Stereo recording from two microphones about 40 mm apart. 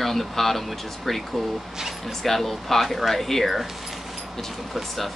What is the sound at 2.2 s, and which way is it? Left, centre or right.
Speech, centre.